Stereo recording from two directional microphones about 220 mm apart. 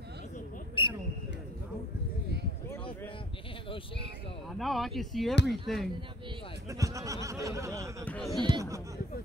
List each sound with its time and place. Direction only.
0.8 s a sound: 20° left (ahead or behind)
4.6 s speech: centre (ahead or behind)
6.7 s speech: 15° right (ahead or behind)
8.0 s speech: 5° left (ahead or behind)
8.3 s speech: 20° right (ahead or behind)